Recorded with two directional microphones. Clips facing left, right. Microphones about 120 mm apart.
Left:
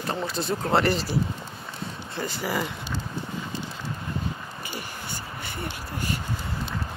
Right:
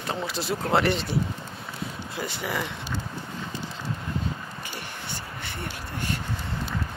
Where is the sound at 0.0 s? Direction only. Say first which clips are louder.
Left 1 dB; centre (ahead or behind).